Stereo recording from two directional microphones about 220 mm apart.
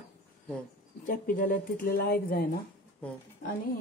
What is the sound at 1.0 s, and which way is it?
Speech, 40° left (ahead or behind).